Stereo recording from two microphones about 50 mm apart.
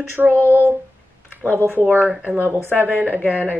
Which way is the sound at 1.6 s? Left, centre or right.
Right.